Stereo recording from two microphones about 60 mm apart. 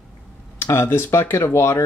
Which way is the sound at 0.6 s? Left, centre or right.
Left.